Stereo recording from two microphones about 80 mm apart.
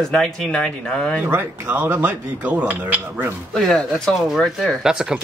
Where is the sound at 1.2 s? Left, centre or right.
Right.